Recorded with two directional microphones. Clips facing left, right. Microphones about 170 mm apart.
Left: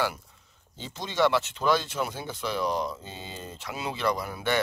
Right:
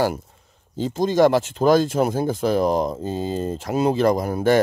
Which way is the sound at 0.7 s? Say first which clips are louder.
Right 10 dB; 45° right (ahead or behind).